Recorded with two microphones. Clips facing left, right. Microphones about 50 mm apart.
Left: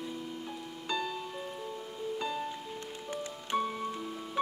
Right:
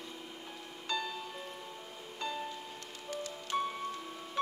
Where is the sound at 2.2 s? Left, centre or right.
Centre.